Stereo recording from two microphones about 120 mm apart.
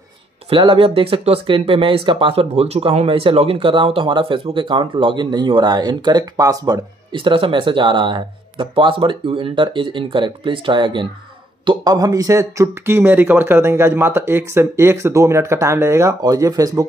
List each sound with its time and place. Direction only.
0.5 s speech: 45° right (ahead or behind); by 16.8 s 30° right (ahead or behind)